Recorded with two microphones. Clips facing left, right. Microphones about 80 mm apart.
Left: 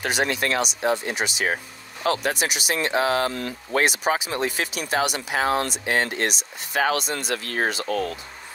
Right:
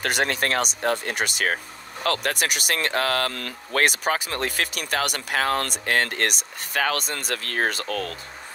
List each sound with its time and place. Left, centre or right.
0.0 s speech: right
7.8 s speech: left